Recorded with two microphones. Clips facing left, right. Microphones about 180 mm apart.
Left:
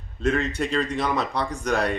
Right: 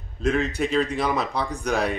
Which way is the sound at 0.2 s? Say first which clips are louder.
Right 1 dB; centre (ahead or behind).